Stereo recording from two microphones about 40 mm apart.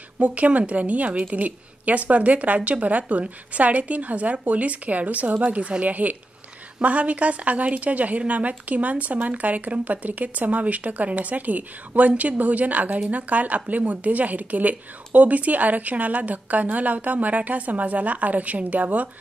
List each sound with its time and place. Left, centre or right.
0.2 s a woman's voice: right